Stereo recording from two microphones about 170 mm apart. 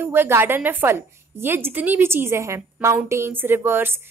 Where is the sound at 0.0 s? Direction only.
15° right (ahead or behind).